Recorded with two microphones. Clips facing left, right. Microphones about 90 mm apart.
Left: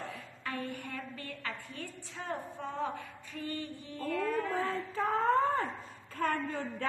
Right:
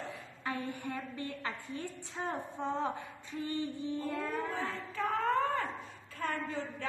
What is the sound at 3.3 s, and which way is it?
Music, 20° right (ahead or behind).